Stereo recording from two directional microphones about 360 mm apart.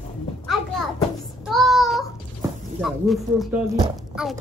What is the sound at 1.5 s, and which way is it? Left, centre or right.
Speech, centre.